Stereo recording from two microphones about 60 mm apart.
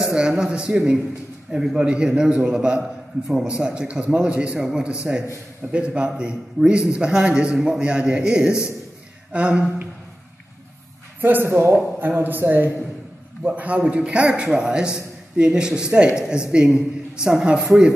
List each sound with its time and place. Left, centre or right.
0.1 s a man's voice: centre
2.8 s a man's voice: centre
3.4 s a man's voice: centre
11.1 s a man's voice: right
11.4 s a man's voice: right
11.7 s a man's voice: right
13.5 s a man's voice: right